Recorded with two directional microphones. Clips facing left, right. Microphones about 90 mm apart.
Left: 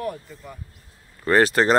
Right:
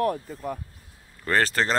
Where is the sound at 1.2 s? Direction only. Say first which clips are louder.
Left 5 dB; 10° left (ahead or behind).